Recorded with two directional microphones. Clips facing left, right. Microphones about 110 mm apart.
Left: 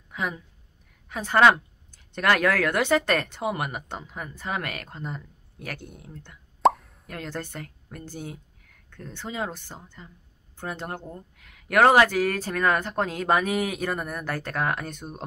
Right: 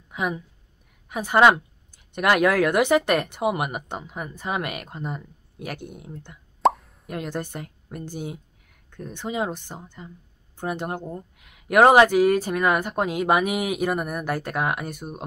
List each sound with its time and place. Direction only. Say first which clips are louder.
0.1 s a woman's voice: right 4 dB; 20° right (ahead or behind)
6.6 s plop: even; centre (ahead or behind)
7.1 s speech: right 4 dB; 15° right (ahead or behind)